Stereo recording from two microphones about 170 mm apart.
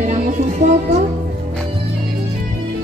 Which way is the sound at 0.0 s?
45° right (ahead or behind).